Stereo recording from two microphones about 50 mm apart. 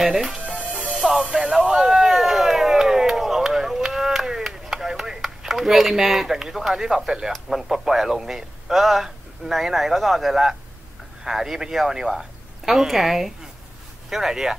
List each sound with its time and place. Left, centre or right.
0.0 s speech: centre
0.7 s music: centre
1.0 s speech: centre
1.7 s a sound: centre
11.2 s speech: centre